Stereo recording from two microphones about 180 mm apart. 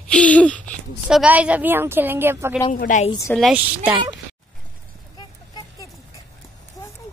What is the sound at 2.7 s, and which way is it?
Speech, 45° left (ahead or behind).